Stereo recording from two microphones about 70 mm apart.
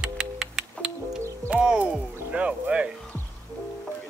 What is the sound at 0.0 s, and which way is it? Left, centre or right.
Music, centre.